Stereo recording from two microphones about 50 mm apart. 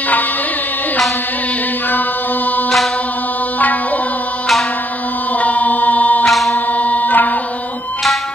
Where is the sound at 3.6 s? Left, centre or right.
Left.